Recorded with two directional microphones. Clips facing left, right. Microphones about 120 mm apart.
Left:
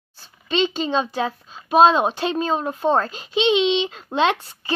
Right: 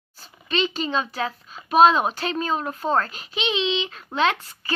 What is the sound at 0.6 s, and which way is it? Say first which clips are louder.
Speech: left 4 dB; 25° left (ahead or behind).